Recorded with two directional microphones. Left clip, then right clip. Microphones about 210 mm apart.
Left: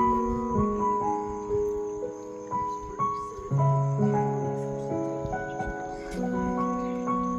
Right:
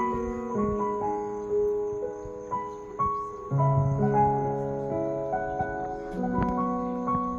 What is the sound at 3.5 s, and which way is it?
Music, 65° left (ahead or behind).